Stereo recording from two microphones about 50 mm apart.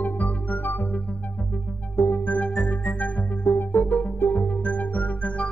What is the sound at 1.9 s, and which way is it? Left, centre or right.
Music, left.